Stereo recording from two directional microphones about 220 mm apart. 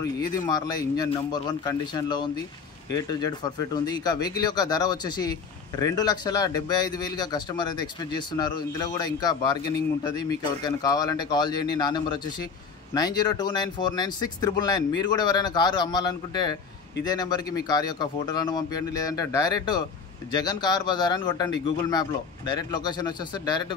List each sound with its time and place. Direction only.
0.0 s a man's voice: 15° left (ahead or behind)